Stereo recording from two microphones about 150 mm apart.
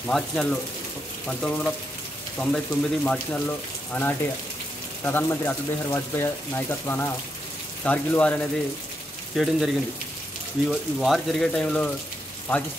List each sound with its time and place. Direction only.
0.0 s speech: 5° left (ahead or behind)
9.3 s speech: 5° right (ahead or behind)
10.7 s speech: centre (ahead or behind)